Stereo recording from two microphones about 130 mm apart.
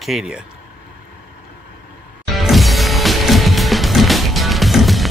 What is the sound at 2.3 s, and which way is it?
Music, centre (ahead or behind).